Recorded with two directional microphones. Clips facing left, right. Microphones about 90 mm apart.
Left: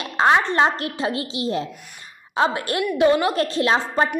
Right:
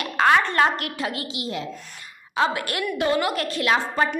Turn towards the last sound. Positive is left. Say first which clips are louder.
# left 2 dB
turn(degrees=30)  # may be behind; listen again after turning